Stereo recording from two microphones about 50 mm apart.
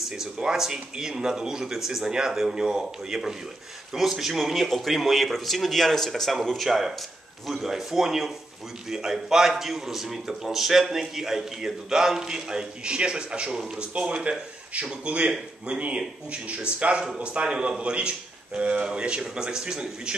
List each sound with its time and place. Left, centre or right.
0.0 s a man's voice: centre